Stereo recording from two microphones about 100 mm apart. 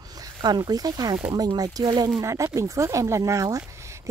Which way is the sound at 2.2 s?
30° right (ahead or behind).